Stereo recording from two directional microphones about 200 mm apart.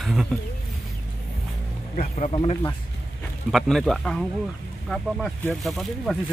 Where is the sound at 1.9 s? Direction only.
35° left (ahead or behind).